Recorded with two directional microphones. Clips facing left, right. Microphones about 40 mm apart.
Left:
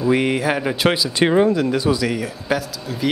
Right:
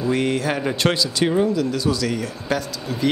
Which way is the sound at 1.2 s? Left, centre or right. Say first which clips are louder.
Left 4 dB; left.